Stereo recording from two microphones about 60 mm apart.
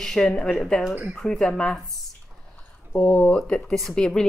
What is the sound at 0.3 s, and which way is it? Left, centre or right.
Speech, centre.